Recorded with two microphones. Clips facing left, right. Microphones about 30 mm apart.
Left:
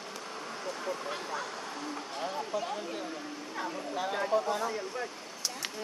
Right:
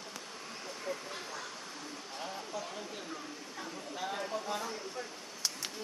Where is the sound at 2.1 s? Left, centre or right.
Left.